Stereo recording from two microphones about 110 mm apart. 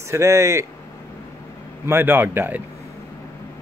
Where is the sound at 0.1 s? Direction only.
25° right (ahead or behind).